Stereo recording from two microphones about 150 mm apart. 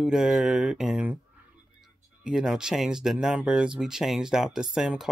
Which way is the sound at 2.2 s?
5° right (ahead or behind).